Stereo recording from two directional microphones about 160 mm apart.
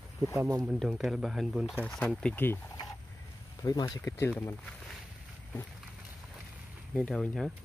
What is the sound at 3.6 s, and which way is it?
Speech, 25° left (ahead or behind).